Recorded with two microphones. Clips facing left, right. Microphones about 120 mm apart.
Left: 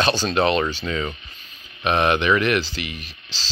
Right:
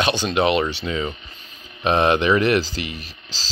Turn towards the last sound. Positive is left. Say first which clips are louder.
# right 1 dB
turn(degrees=-35)  # may be behind; listen again after turning